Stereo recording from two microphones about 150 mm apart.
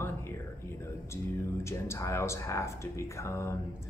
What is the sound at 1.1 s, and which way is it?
Speech, 20° left (ahead or behind).